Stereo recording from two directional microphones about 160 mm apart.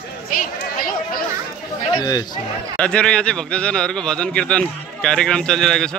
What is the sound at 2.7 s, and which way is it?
A man's voice, 5° left (ahead or behind).